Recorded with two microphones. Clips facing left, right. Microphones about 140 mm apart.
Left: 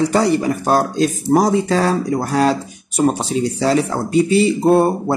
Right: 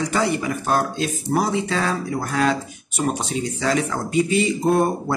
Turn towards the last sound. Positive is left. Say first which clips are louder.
# left 5 dB
turn(degrees=30)  # may be behind; listen again after turning